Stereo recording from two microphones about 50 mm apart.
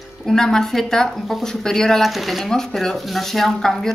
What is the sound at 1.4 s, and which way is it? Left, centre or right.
A woman's voice, centre.